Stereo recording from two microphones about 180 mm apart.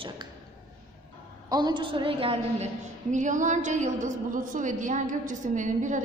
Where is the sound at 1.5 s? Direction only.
25° right (ahead or behind).